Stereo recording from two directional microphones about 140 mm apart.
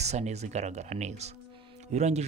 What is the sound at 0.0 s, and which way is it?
Speech, 50° right (ahead or behind).